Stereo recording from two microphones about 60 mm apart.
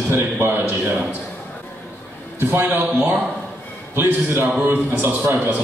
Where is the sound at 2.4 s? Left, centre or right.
Right.